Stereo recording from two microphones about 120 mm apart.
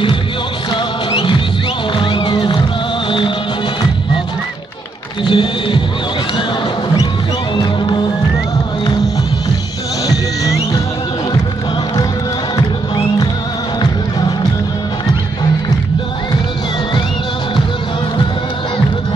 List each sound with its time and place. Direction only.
1.1 s music: 45° left (ahead or behind)
5.2 s music: 40° left (ahead or behind)
7.5 s music: 40° left (ahead or behind)
10.0 s music: 30° left (ahead or behind)